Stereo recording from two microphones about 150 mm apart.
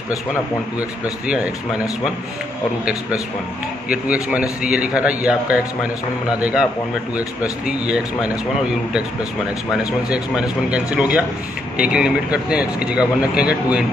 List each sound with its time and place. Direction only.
0.7 s speech: 5° right (ahead or behind)
2.8 s speech: 10° right (ahead or behind)